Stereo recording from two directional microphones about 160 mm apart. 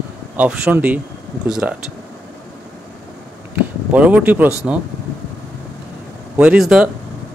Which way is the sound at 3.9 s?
10° right (ahead or behind).